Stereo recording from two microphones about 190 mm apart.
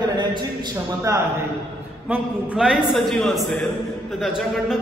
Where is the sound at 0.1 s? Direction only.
25° right (ahead or behind).